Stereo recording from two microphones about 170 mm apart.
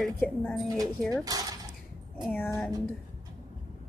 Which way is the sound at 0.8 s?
20° right (ahead or behind).